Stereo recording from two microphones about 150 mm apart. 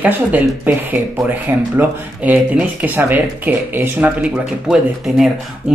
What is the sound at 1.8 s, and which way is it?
Speech, 10° right (ahead or behind).